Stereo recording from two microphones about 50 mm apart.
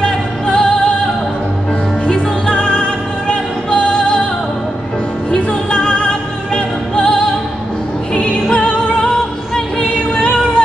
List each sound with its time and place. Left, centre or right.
0.0 s music: centre
2.0 s music: centre
5.3 s music: centre
9.8 s female singing: centre